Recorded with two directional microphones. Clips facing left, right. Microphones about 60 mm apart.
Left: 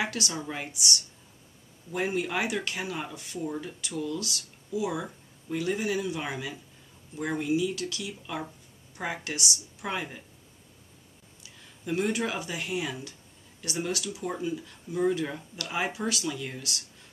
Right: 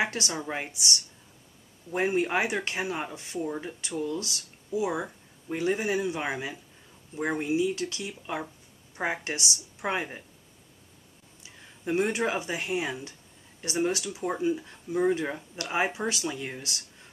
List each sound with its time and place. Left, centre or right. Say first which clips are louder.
0.0 s speech: right 2 dB; right
3.4 s speech: left 1 dB; centre
3.8 s speech: right 2 dB; right
11.4 s speech: right 3 dB; right